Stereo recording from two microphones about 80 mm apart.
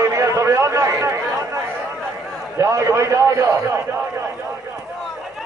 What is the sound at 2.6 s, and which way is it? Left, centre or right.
Speech, right.